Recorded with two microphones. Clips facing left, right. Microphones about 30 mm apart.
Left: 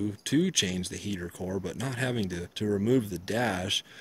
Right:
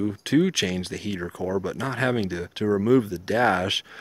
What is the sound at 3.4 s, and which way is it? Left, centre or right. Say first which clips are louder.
Speech: right 8 dB; right.